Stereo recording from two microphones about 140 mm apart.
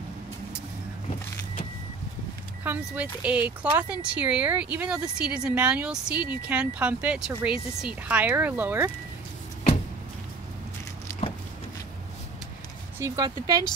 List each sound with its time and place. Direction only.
2.6 s speech: 10° right (ahead or behind)
11.1 s a sound: 20° left (ahead or behind)
13.0 s speech: 25° right (ahead or behind)